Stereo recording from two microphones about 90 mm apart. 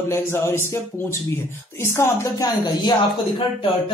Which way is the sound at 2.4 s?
45° left (ahead or behind).